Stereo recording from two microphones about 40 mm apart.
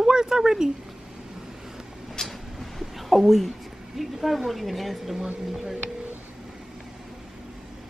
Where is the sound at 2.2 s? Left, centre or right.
Centre.